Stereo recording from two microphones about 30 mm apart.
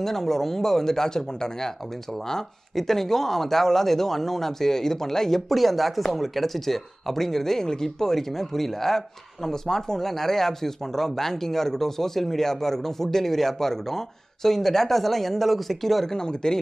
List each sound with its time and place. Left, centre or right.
0.0 s speech: centre
2.7 s speech: centre
5.5 s speech: centre
16.1 s speech: left